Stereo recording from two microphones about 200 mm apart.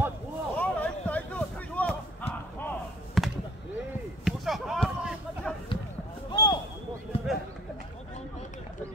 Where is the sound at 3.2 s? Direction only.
Centre (ahead or behind).